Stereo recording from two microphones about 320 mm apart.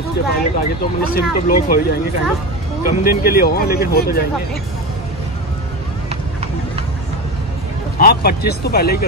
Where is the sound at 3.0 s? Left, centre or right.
Left.